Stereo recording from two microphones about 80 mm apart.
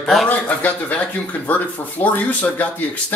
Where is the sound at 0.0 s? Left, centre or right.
Centre.